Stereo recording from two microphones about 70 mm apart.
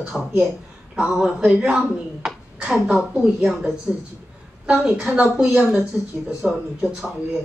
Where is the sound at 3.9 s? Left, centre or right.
Centre.